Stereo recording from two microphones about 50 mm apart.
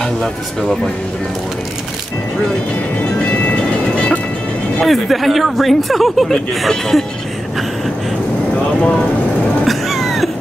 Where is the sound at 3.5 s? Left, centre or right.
Left.